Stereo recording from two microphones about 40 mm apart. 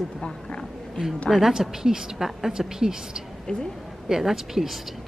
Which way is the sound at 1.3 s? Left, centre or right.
Centre.